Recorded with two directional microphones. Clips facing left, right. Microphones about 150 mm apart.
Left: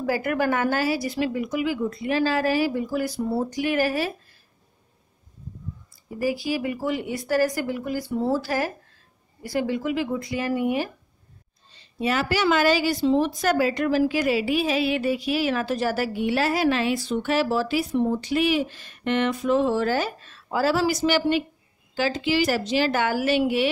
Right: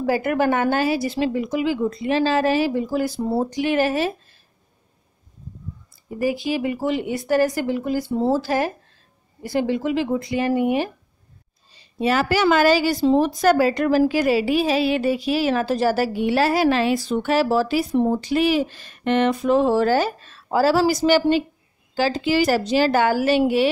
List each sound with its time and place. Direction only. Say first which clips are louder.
0.0 s a woman's voice: right 4 dB; 25° right (ahead or behind)
6.0 s a woman's voice: right 3 dB; 20° right (ahead or behind)
12.0 s a woman's voice: right 4 dB; 35° right (ahead or behind)